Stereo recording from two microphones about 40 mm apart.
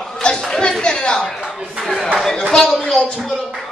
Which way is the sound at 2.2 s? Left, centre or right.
Centre.